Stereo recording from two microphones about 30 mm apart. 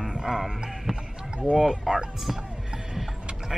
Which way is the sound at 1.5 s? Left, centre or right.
Centre.